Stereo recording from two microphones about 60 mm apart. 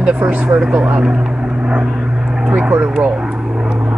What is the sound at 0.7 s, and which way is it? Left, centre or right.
Vehicle, right.